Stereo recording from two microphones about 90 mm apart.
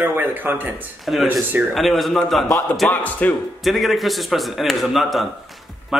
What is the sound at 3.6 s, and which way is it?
A man's voice, centre (ahead or behind).